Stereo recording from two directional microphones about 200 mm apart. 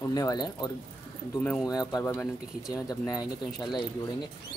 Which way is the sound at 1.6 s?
20° left (ahead or behind).